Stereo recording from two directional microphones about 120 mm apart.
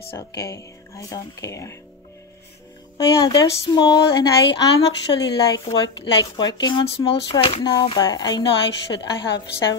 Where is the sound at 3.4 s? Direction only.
35° left (ahead or behind).